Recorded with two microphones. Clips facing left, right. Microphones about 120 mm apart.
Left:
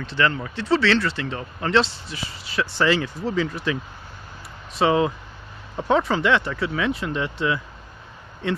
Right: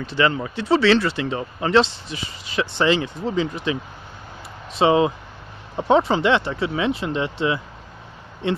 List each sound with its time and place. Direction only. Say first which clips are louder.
0.0 s speech: right 2 dB; 10° right (ahead or behind)
4.7 s speech: right 3 dB; 20° right (ahead or behind)